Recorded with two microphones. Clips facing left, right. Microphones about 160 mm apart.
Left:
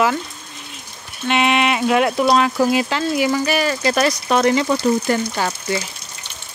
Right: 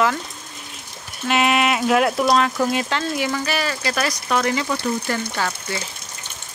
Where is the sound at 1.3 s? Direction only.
Centre (ahead or behind); by 5.2 s 20° left (ahead or behind).